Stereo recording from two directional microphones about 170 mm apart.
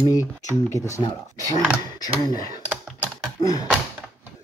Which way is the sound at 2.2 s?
25° left (ahead or behind).